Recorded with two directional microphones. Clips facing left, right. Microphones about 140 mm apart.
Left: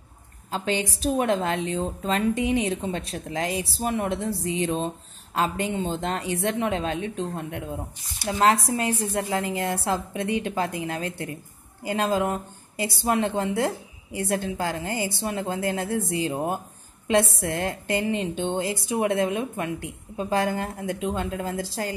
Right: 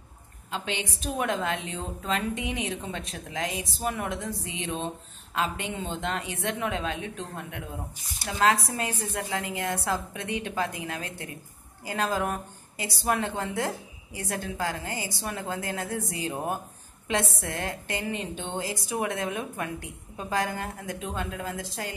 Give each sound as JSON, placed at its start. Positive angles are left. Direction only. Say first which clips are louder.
{"t": 0.5, "sound": "a woman's voice", "louder": "left 6 dB", "side_deg": 35}